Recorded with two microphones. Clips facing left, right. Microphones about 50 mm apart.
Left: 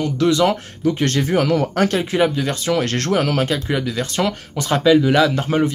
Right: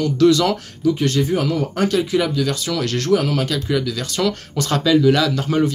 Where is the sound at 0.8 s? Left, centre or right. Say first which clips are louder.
Right 1 dB; left.